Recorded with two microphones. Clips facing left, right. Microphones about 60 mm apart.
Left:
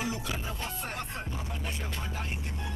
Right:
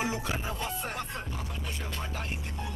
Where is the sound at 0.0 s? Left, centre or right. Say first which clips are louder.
Right 2 dB; right.